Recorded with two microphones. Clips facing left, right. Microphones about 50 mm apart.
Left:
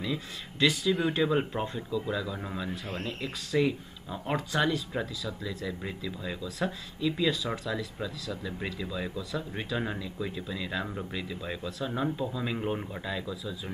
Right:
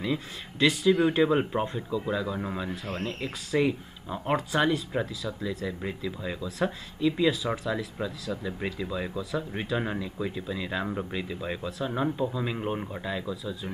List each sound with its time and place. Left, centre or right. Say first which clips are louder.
0.6 s speech: right 4 dB; centre